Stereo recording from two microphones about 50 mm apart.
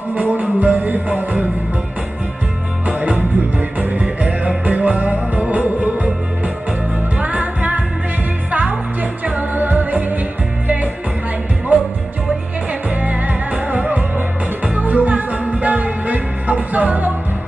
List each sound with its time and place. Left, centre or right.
0.1 s music: right
2.9 s music: right
12.9 s music: right